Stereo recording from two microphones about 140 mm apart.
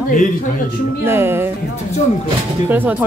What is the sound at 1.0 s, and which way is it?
Speech, 15° right (ahead or behind).